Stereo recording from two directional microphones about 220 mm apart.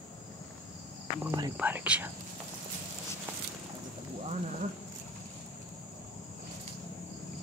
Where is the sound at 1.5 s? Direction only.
5° right (ahead or behind).